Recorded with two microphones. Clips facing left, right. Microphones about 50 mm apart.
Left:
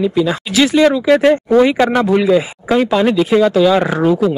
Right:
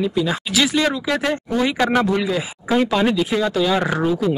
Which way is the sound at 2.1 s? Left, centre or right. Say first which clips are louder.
Left 9 dB; centre.